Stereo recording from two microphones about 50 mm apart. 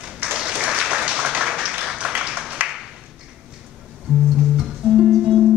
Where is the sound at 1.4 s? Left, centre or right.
Centre.